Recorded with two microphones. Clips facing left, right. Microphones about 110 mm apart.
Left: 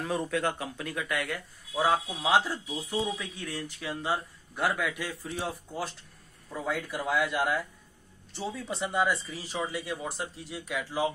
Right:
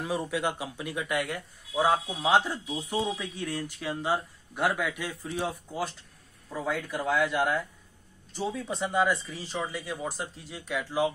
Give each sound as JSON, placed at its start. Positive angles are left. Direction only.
{"t": 0.0, "sound": "speech", "side_deg": -10}
{"t": 3.3, "sound": "speech", "side_deg": 0}